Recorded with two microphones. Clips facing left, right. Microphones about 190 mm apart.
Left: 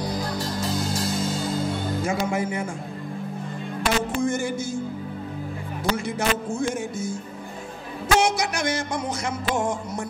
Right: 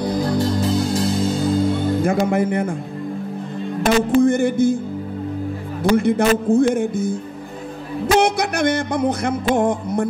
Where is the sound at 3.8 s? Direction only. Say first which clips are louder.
Right 9 dB; 60° right (ahead or behind).